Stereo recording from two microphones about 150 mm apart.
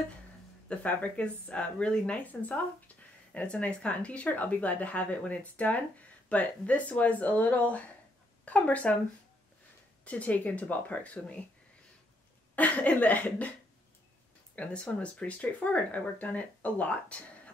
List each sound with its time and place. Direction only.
0.7 s speech: 10° left (ahead or behind)
10.0 s speech: 10° left (ahead or behind)
12.5 s speech: 10° left (ahead or behind)
14.5 s speech: 10° left (ahead or behind)